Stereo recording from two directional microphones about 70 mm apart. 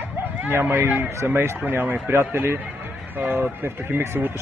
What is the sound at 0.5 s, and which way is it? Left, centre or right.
Speech, right.